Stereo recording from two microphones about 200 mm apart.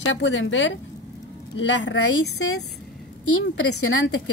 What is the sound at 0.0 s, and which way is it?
Speech, 70° left (ahead or behind).